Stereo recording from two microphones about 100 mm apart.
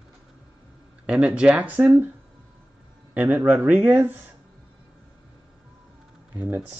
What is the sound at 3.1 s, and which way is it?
Speech, 15° right (ahead or behind).